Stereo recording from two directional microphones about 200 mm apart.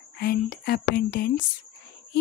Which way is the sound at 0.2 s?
50° left (ahead or behind).